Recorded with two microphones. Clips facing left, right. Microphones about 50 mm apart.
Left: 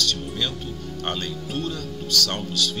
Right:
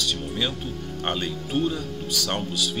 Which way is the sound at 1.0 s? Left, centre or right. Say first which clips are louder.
Right 1 dB; centre.